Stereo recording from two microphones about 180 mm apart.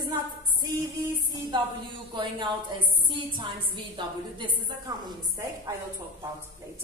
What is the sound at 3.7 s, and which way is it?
A woman's voice, 25° right (ahead or behind).